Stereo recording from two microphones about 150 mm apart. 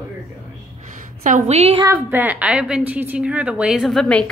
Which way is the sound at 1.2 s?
50° right (ahead or behind).